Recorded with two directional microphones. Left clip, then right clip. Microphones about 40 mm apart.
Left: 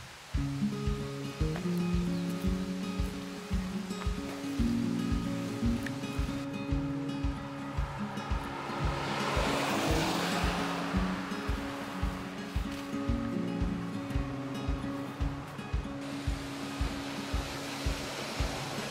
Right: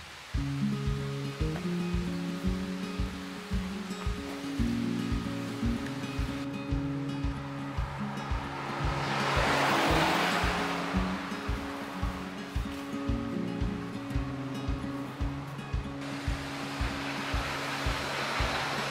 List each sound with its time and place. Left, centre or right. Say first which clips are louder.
8.8 s music: right 3 dB; centre
9.5 s music: right 5 dB; right
10.3 s music: right 3 dB; centre
18.5 s music: right 6 dB; right